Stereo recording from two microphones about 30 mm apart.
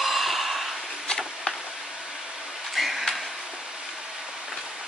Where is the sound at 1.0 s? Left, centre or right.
Left.